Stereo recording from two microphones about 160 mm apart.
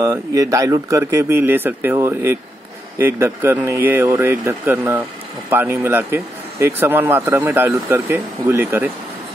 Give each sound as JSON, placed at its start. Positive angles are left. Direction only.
{"t": 0.0, "sound": "speech", "side_deg": -20}